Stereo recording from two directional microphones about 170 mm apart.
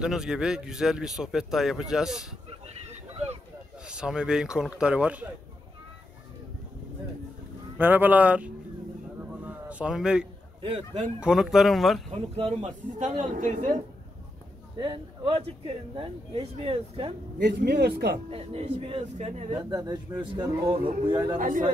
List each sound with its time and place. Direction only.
0.0 s speech: 5° right (ahead or behind)
3.8 s speech: 5° right (ahead or behind)
7.7 s speech: 10° right (ahead or behind)
9.4 s a sound: 10° right (ahead or behind)
11.1 s speech: 5° right (ahead or behind)
12.1 s speech: 35° right (ahead or behind)
13.0 s speech: 50° right (ahead or behind)
14.8 s speech: 30° right (ahead or behind)
17.4 s speech: 80° right
18.3 s speech: 35° right (ahead or behind)
19.5 s speech: 20° right (ahead or behind)
21.4 s speech: 50° right (ahead or behind)